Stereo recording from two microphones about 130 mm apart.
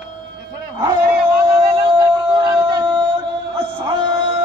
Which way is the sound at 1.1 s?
25° right (ahead or behind).